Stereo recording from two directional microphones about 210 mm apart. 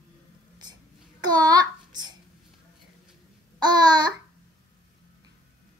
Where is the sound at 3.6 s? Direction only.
20° right (ahead or behind).